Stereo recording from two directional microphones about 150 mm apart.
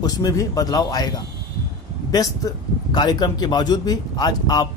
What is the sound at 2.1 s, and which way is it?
A man's voice, 25° left (ahead or behind).